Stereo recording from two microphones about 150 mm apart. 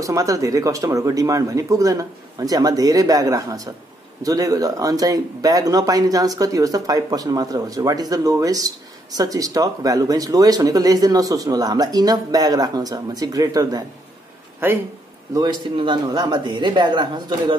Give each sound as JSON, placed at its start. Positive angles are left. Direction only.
{"t": 0.0, "sound": "speech", "side_deg": -20}
{"t": 15.3, "sound": "speech", "side_deg": -30}